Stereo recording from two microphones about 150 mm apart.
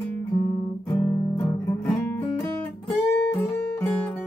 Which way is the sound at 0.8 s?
20° left (ahead or behind).